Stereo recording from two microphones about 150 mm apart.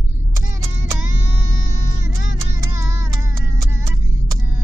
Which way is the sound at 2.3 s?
20° right (ahead or behind).